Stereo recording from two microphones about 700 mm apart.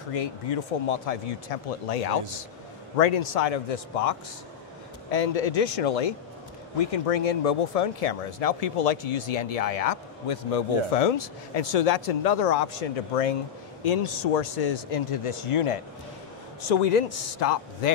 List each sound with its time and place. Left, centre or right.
0.1 s speech: left
16.6 s a man's voice: left